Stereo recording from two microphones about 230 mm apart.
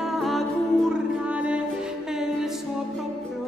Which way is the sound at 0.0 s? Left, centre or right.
Centre.